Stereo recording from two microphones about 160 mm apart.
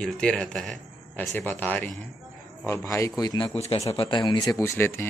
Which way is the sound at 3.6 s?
40° left (ahead or behind).